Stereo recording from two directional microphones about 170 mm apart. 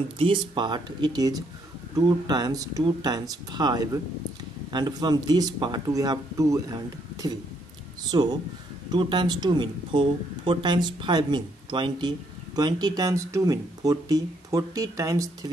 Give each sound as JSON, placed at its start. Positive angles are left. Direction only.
{"t": 0.2, "sound": "speech", "side_deg": -30}